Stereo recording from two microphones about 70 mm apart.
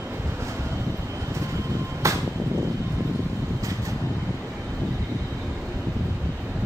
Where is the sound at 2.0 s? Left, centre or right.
Right.